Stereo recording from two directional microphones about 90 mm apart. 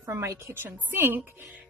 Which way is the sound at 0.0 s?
35° right (ahead or behind).